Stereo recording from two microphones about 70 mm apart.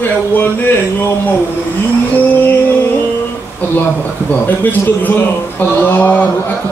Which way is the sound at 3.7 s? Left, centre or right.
Left.